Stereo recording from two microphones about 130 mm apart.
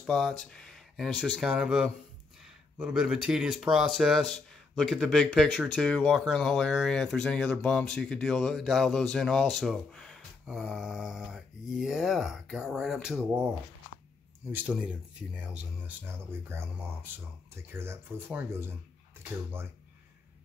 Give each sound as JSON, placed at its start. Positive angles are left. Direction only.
{"t": 0.0, "sound": "speech", "side_deg": 0}
{"t": 16.1, "sound": "speech", "side_deg": -20}